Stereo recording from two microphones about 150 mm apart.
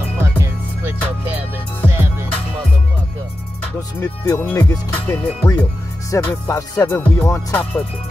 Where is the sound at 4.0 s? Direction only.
20° left (ahead or behind).